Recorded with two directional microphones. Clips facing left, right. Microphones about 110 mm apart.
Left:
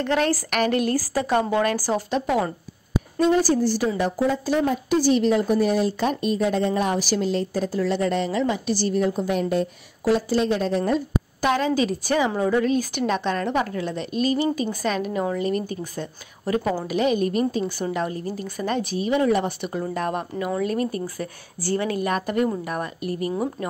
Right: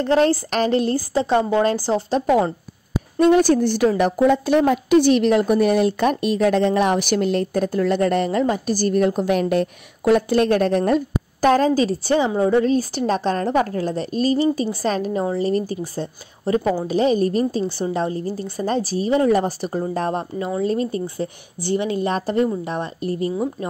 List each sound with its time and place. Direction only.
0.0 s a woman's voice: 35° right (ahead or behind)
3.2 s a woman's voice: 65° right (ahead or behind)
11.4 s a woman's voice: 40° right (ahead or behind)